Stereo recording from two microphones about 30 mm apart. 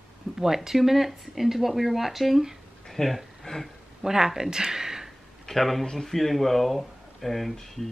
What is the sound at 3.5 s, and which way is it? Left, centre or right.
Speech, left.